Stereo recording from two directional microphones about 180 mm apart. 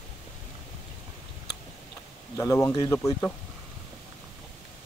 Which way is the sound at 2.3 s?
15° left (ahead or behind).